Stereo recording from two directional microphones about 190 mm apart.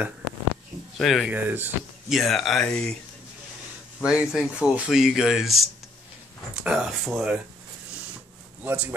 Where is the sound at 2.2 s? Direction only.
Centre (ahead or behind).